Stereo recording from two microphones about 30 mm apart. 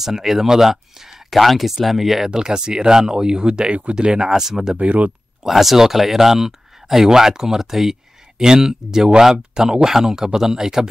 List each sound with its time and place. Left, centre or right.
0.0 s speech: centre
1.3 s speech: centre
2.3 s speech: right
4.3 s speech: centre
4.7 s speech: right
5.4 s speech: centre